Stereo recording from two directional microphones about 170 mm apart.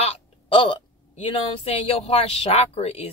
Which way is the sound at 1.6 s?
35° left (ahead or behind).